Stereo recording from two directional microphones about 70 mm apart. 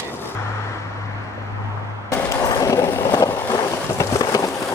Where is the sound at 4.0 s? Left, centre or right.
Left.